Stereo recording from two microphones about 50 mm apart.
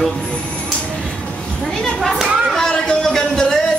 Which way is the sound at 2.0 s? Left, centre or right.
Centre.